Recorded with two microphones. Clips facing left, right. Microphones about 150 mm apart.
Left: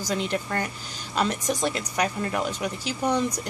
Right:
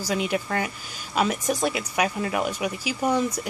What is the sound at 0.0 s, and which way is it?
Speech, 10° right (ahead or behind).